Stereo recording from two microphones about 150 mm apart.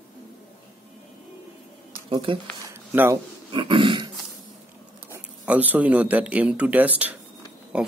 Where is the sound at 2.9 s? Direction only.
15° right (ahead or behind).